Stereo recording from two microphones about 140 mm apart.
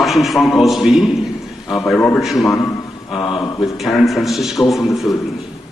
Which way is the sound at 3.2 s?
30° left (ahead or behind).